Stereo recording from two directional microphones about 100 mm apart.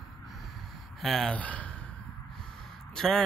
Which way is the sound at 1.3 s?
15° left (ahead or behind).